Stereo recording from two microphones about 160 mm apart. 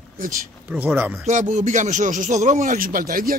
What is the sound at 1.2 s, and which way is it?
Speech, 50° right (ahead or behind).